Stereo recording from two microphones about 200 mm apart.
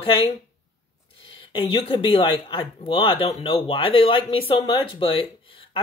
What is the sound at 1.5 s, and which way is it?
Speech, 25° left (ahead or behind).